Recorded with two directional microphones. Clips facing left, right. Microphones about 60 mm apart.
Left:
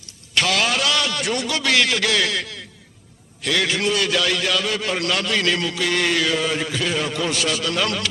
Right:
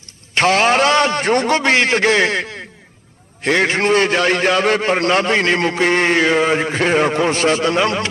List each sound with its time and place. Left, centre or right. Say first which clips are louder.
0.3 s a man's voice: right 7 dB; right